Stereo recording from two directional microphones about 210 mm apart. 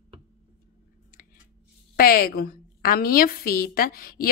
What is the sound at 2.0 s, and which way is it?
A woman's voice, 45° left (ahead or behind).